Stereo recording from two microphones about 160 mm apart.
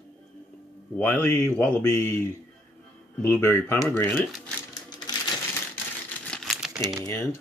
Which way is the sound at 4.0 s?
5° left (ahead or behind).